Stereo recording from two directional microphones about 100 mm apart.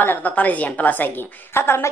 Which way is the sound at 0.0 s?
15° left (ahead or behind).